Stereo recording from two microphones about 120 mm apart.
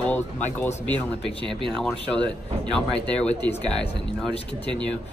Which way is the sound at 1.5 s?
5° left (ahead or behind).